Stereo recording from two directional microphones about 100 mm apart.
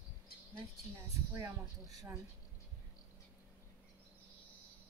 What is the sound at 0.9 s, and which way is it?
Speech, 30° right (ahead or behind).